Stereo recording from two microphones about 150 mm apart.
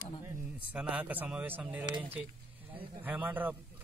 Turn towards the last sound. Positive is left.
turn(degrees=-10)  # may be behind; listen again after turning